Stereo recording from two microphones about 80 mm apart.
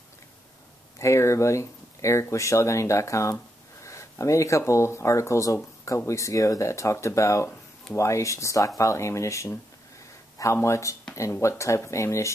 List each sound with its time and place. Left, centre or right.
0.9 s speech: left